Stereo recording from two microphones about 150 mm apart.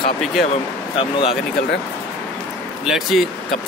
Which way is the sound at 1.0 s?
40° left (ahead or behind).